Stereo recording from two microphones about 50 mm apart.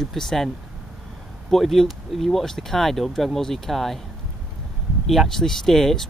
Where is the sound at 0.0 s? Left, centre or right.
Centre.